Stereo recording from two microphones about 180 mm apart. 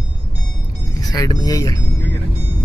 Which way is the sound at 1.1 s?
20° left (ahead or behind).